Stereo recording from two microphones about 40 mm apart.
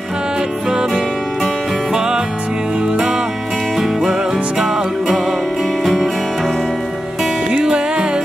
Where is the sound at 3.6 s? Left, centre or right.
Centre.